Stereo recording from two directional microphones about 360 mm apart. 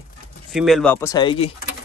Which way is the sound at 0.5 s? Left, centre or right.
Centre.